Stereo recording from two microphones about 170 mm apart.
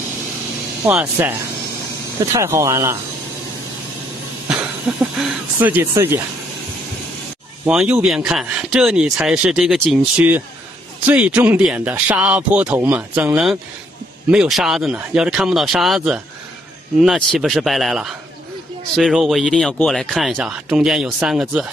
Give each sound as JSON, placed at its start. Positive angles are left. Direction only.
{"t": 0.8, "sound": "speech", "side_deg": -10}
{"t": 2.3, "sound": "speech", "side_deg": -15}
{"t": 4.9, "sound": "speech", "side_deg": -5}
{"t": 7.6, "sound": "speech", "side_deg": -5}